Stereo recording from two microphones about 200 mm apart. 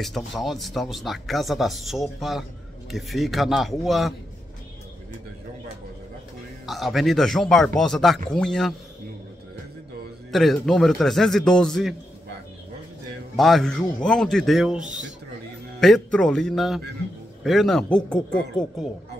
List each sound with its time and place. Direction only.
0.0 s speech: centre (ahead or behind)
6.6 s speech: centre (ahead or behind)
10.3 s speech: centre (ahead or behind)
13.4 s speech: centre (ahead or behind)
14.8 s speech: 40° right (ahead or behind)
15.8 s speech: 5° left (ahead or behind)